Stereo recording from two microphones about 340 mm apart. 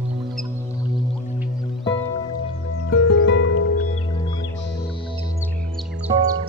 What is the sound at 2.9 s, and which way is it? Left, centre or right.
Music, left.